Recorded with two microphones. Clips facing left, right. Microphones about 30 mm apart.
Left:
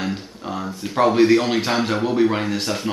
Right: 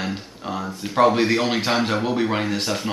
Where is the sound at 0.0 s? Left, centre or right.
Centre.